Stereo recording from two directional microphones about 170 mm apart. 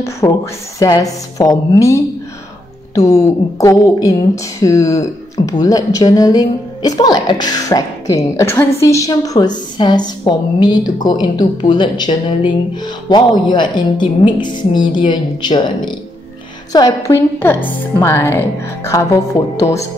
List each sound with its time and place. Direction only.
0.2 s a woman's voice: 25° left (ahead or behind)
19.5 s a woman's voice: 20° left (ahead or behind)